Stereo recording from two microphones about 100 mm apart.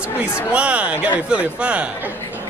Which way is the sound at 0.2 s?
10° right (ahead or behind).